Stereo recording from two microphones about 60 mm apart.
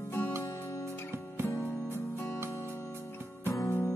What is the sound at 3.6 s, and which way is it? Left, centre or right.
Music, left.